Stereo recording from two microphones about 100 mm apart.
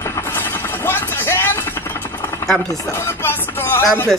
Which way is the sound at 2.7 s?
30° left (ahead or behind).